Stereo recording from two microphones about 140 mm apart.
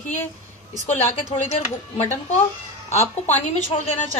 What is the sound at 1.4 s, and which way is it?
Speech, 55° left (ahead or behind).